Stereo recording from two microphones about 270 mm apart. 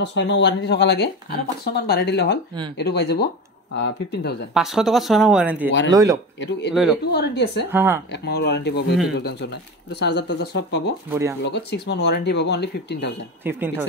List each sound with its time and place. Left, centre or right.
0.0 s speech: left
4.6 s speech: centre
6.7 s speech: centre
7.1 s speech: left
7.7 s speech: centre
8.1 s speech: left
11.1 s speech: centre
11.4 s speech: left
13.4 s speech: centre